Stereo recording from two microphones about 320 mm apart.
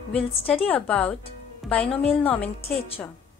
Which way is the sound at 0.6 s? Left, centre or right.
Centre.